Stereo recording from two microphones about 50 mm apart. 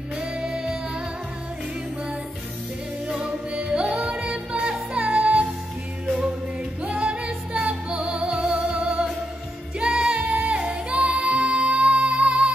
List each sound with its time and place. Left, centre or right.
0.2 s music: centre
3.2 s music: centre
6.8 s music: right